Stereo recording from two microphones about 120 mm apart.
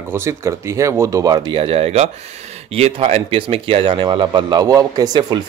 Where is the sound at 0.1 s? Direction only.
25° right (ahead or behind).